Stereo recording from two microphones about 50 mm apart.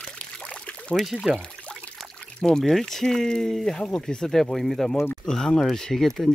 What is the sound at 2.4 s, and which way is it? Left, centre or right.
Speech, centre.